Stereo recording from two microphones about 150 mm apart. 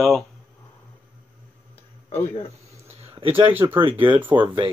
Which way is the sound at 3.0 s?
40° right (ahead or behind).